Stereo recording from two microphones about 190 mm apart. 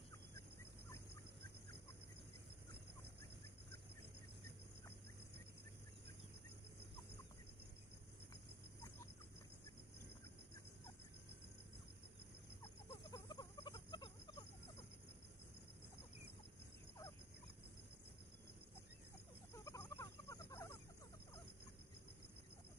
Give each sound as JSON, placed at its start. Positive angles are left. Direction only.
{"t": 8.8, "sound": "cricket", "side_deg": 15}
{"t": 13.1, "sound": "chicken", "side_deg": 20}
{"t": 19.5, "sound": "chicken", "side_deg": 15}